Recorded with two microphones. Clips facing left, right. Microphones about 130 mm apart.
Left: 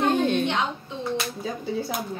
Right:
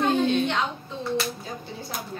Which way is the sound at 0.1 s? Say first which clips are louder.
Even; 50° left (ahead or behind).